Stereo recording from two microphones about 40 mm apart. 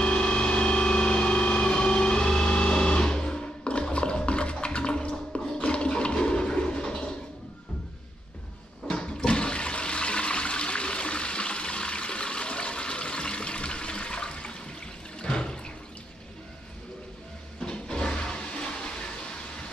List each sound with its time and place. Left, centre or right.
0.0 s vehicle: left
5.7 s toilet flush: left
8.8 s toilet flush: left
15.1 s water: left
17.6 s toilet flush: left